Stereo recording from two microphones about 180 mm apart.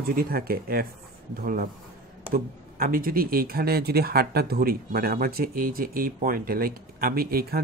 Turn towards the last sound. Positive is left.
turn(degrees=-55)  # may be behind; listen again after turning